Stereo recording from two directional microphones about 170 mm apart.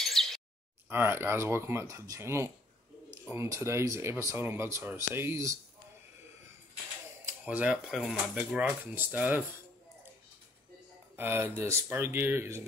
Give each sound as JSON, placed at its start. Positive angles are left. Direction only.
{"t": 0.0, "sound": "a sound", "side_deg": 0}
{"t": 0.8, "sound": "speech", "side_deg": -15}
{"t": 7.4, "sound": "speech", "side_deg": -5}
{"t": 11.1, "sound": "speech", "side_deg": -10}